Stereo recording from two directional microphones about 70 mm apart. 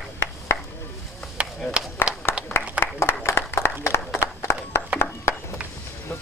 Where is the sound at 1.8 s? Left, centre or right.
Centre.